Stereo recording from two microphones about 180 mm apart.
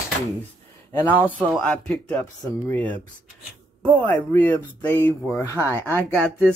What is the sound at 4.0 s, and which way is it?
Speech, 10° left (ahead or behind).